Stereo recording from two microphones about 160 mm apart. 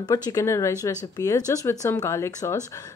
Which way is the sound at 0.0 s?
25° left (ahead or behind).